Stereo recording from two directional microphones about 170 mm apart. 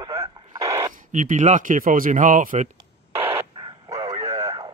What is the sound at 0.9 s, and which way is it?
Speech, 50° right (ahead or behind).